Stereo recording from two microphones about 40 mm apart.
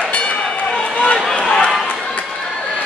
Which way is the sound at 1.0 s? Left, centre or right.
Left.